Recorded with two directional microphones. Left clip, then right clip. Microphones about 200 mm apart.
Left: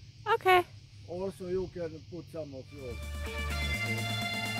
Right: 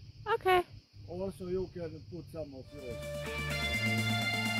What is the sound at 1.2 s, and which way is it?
Speech, 30° right (ahead or behind).